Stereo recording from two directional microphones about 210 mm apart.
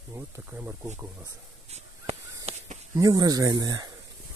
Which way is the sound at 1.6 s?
30° right (ahead or behind).